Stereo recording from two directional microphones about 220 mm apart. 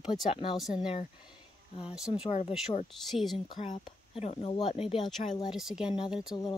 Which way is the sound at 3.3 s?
20° left (ahead or behind).